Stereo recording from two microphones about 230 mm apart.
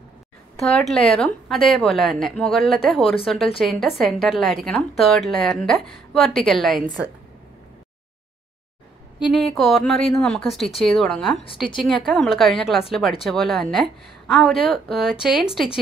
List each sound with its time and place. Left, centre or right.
0.6 s a woman's voice: centre
9.3 s a woman's voice: centre
11.4 s a woman's voice: left
11.8 s a woman's voice: centre